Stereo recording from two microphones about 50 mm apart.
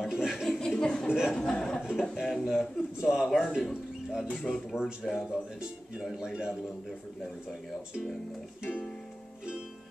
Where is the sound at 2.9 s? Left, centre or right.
Centre.